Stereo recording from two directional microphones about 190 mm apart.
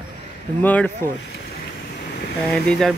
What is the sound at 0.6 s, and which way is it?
Speech, 10° left (ahead or behind).